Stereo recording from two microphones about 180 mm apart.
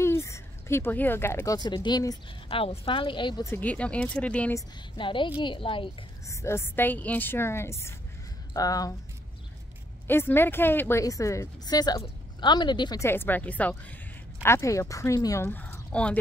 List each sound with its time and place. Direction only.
0.0 s speech: 15° left (ahead or behind)
3.4 s speech: 10° left (ahead or behind)
4.9 s speech: 25° left (ahead or behind)
6.2 s speech: 15° left (ahead or behind)
10.0 s speech: 10° left (ahead or behind)